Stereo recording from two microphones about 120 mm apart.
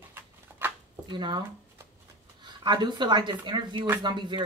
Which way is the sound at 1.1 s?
40° right (ahead or behind).